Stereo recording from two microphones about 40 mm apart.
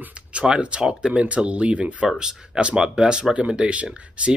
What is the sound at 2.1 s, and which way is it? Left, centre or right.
Speech, right.